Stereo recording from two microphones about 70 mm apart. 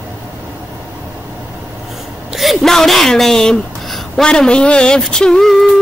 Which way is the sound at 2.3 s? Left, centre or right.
Centre.